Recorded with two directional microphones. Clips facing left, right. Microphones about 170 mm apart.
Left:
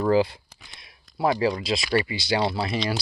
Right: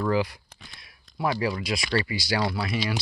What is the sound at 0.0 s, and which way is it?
Speech, 30° left (ahead or behind).